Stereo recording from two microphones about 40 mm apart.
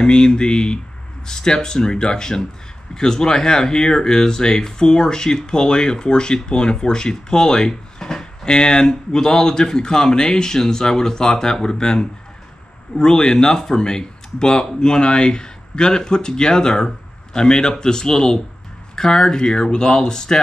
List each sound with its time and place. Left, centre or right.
0.0 s speech: left